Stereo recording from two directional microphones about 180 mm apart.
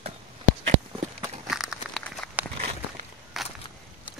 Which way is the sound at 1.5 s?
Centre (ahead or behind).